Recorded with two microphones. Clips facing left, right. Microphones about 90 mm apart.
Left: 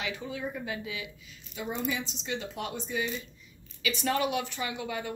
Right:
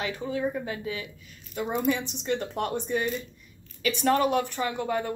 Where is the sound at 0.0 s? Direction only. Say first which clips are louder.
Right 6 dB; 35° right (ahead or behind).